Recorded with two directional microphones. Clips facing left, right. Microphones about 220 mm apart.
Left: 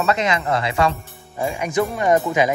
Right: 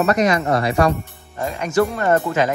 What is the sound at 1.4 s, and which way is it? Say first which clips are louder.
Speech: right 2 dB; 10° left (ahead or behind).